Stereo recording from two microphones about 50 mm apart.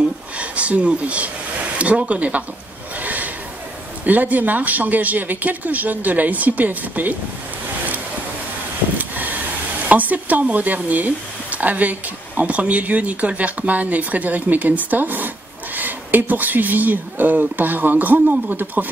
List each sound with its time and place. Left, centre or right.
0.4 s speech: right
3.0 s snort: right
4.0 s speech: right
8.9 s vehicle: right
9.8 s speech: right